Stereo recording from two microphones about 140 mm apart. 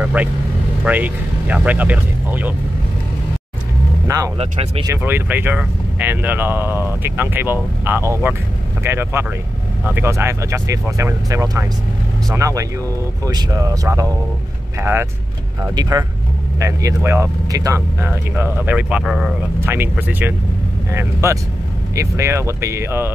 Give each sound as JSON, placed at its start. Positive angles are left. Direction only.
{"t": 0.0, "sound": "speech", "side_deg": -10}
{"t": 4.4, "sound": "speech", "side_deg": -45}
{"t": 4.8, "sound": "speech", "side_deg": -15}
{"t": 15.6, "sound": "speech", "side_deg": -25}
{"t": 18.0, "sound": "speech", "side_deg": -15}
{"t": 19.6, "sound": "speech", "side_deg": -15}